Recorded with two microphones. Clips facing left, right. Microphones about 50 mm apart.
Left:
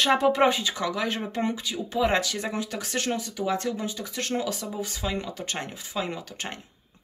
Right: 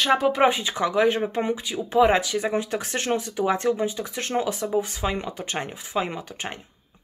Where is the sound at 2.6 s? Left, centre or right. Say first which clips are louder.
Right 2 dB; right.